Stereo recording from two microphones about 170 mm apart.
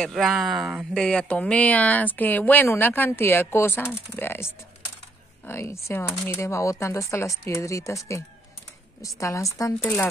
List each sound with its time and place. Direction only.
0.0 s speech: centre (ahead or behind)
5.5 s speech: 15° left (ahead or behind)